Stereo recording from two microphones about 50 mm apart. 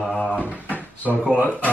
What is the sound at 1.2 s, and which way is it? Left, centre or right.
Speech, right.